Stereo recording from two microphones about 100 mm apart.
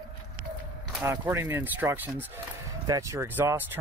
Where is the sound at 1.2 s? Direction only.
20° right (ahead or behind).